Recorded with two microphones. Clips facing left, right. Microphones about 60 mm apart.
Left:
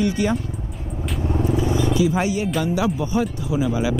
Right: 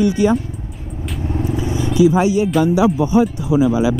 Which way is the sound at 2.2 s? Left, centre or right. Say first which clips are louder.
Right 7 dB; centre.